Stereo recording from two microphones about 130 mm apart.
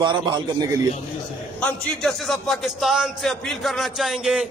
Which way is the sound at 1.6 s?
10° left (ahead or behind).